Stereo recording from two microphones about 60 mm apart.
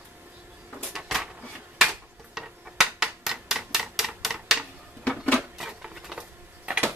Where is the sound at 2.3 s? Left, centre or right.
Centre.